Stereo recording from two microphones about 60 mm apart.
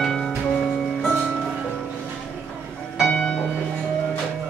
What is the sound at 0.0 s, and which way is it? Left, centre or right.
Music, centre.